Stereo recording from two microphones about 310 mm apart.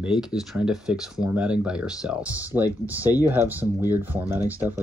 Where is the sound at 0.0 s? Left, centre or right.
Centre.